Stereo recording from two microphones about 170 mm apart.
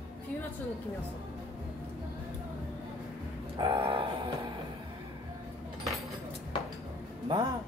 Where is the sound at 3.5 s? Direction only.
30° right (ahead or behind).